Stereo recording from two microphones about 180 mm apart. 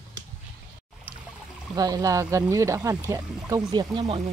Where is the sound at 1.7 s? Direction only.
20° right (ahead or behind).